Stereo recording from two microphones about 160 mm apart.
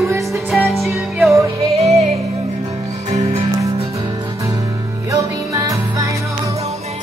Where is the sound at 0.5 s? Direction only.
Centre (ahead or behind).